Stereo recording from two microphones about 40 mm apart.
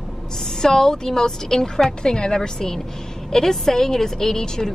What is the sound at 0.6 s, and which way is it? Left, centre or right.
A woman's voice, centre.